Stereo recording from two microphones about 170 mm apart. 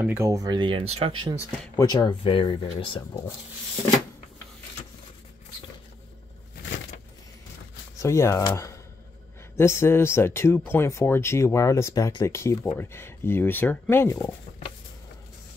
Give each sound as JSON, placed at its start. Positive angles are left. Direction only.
{"t": 0.0, "sound": "speech", "side_deg": -15}
{"t": 1.8, "sound": "speech", "side_deg": 25}
{"t": 8.0, "sound": "speech", "side_deg": 15}